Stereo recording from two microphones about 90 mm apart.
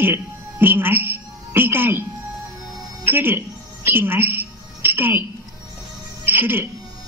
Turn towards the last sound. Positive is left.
turn(degrees=-25)  # may be behind; listen again after turning